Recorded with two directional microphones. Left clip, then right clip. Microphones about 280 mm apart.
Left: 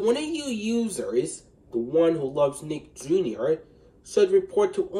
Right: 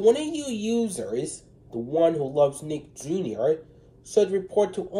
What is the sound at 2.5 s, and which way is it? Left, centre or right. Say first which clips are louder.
Speech: even; centre.